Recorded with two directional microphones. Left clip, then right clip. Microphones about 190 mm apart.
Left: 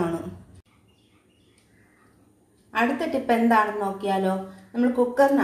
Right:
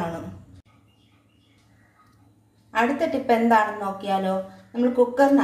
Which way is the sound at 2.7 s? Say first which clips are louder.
Right 2 dB; 5° left (ahead or behind).